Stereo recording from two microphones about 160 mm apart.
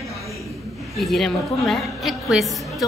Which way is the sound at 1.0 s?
Centre (ahead or behind).